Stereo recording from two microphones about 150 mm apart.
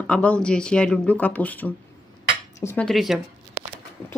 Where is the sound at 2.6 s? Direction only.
20° left (ahead or behind).